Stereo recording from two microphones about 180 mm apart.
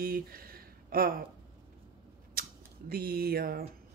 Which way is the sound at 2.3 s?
55° right (ahead or behind).